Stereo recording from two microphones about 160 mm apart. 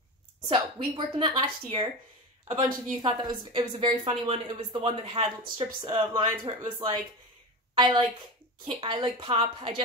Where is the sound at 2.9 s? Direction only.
30° right (ahead or behind).